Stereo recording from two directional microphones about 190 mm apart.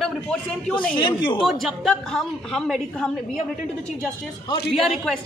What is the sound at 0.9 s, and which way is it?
Speech, 25° left (ahead or behind).